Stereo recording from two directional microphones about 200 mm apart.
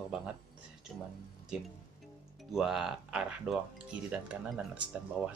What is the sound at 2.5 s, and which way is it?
Speech, centre (ahead or behind).